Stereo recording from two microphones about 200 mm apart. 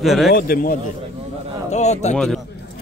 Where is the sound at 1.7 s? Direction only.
35° left (ahead or behind).